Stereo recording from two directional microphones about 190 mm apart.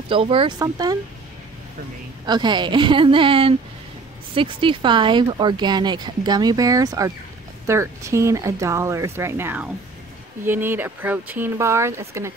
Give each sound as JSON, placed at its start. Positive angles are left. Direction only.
{"t": 0.1, "sound": "speech", "side_deg": -30}
{"t": 2.2, "sound": "speech", "side_deg": -25}